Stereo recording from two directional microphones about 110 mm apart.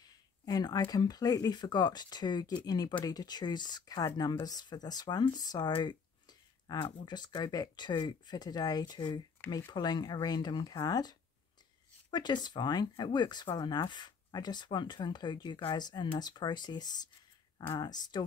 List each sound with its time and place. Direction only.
0.0 s speech: 35° left (ahead or behind)
5.8 s a sound: 40° left (ahead or behind)
7.1 s speech: 40° left (ahead or behind)